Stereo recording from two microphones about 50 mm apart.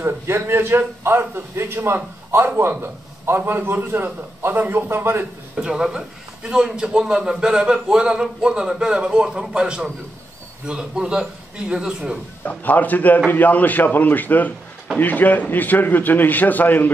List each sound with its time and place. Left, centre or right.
0.0 s a man's voice: right
5.6 s a man's voice: centre
12.4 s a man's voice: left